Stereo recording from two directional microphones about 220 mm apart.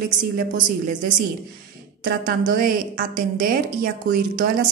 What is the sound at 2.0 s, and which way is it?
Speech, 40° right (ahead or behind).